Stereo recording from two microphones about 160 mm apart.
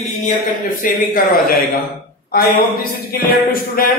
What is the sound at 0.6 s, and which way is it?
A man's voice, 60° left (ahead or behind).